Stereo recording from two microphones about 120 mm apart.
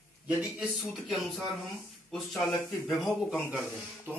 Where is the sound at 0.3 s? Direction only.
5° right (ahead or behind).